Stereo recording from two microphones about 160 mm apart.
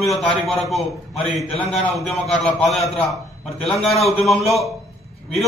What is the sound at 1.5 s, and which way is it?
Speech, 40° left (ahead or behind).